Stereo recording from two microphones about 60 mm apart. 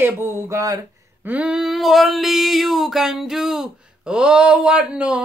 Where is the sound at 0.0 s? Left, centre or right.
Right.